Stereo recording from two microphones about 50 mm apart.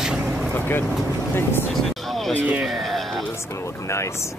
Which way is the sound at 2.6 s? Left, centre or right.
Centre.